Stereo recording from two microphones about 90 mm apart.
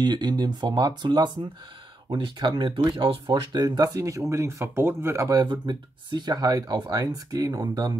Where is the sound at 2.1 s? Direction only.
60° right (ahead or behind).